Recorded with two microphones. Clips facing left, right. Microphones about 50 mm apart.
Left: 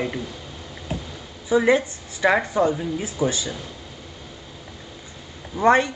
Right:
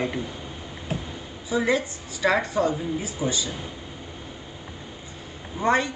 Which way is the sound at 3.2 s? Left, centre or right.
Left.